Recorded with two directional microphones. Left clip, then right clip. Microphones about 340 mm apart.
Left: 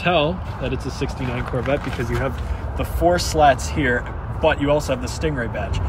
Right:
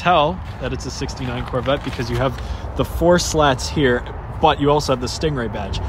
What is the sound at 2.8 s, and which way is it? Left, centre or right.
Speech, centre.